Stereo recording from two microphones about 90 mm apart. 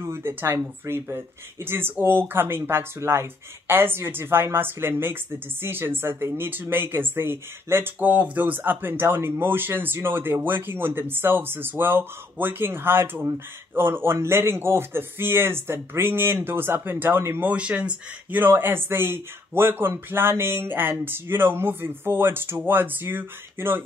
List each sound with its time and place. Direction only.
0.0 s speech: 30° right (ahead or behind)
17.5 s speech: 15° right (ahead or behind)